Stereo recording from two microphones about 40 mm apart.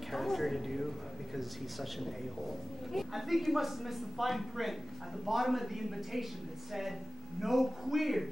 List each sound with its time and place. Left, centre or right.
0.1 s a woman's voice: centre